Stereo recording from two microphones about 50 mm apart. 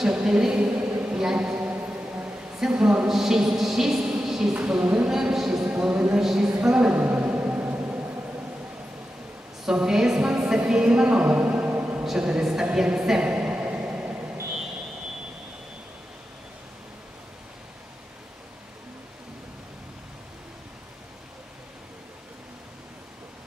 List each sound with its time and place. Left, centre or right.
0.0 s a woman's voice: centre
1.0 s a sound: centre
1.7 s chant: right
2.5 s a woman's voice: centre
4.1 s a sound: centre
4.6 s a woman's voice: right
5.1 s a woman's voice: centre
5.8 s a woman's voice: centre
7.1 s music: right
9.7 s a woman's voice: centre
11.7 s a sound: right
12.0 s a woman's voice: centre
13.7 s vehicle: right